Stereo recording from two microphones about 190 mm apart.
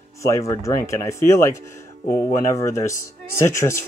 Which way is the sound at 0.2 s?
15° left (ahead or behind).